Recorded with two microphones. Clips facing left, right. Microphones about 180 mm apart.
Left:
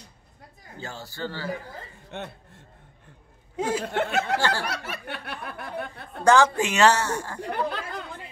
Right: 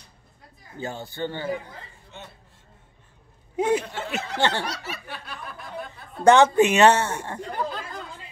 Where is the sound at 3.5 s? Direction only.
20° right (ahead or behind).